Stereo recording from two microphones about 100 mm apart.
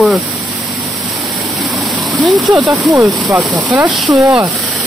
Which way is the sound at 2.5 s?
35° right (ahead or behind).